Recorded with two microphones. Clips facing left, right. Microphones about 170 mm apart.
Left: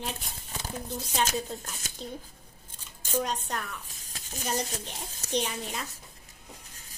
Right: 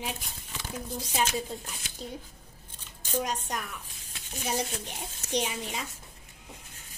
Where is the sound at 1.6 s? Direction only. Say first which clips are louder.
Left 1 dB; 45° left (ahead or behind).